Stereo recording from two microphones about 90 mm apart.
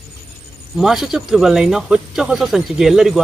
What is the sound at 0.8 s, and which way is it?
Speech, 5° right (ahead or behind).